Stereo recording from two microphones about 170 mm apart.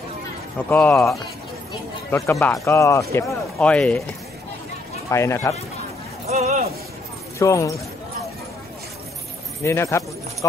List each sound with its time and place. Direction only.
0.7 s speech: 10° left (ahead or behind)
3.5 s speech: 5° left (ahead or behind)
5.1 s speech: 15° left (ahead or behind)
6.2 s a sound: 40° right (ahead or behind)
7.3 s speech: 20° left (ahead or behind)
9.6 s speech: 15° left (ahead or behind)